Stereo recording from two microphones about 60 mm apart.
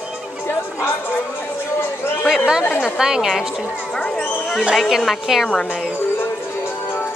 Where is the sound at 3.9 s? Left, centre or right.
Centre.